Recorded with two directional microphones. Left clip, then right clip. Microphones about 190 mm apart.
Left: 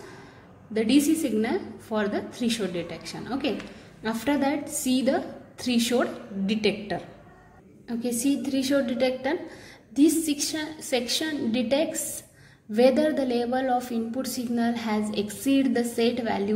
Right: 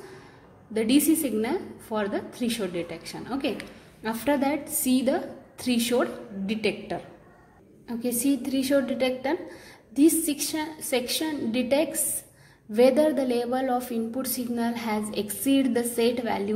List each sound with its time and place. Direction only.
0.7 s a woman's voice: 15° right (ahead or behind)
8.0 s a woman's voice: 15° right (ahead or behind)